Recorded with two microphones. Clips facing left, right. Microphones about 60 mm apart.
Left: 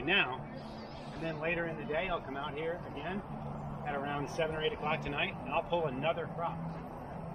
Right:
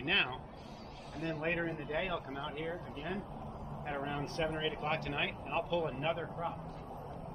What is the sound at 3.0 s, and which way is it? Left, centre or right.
Speech, left.